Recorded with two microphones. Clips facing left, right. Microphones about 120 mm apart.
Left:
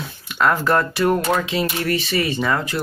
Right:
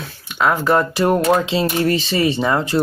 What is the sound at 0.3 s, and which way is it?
Speech, centre (ahead or behind).